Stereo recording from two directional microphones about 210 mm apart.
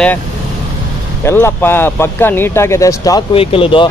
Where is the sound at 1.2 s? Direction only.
10° left (ahead or behind).